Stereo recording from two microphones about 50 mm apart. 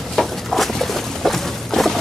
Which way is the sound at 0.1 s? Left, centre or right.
Centre.